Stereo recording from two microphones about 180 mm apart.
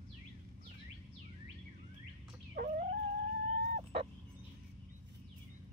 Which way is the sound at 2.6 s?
55° right (ahead or behind).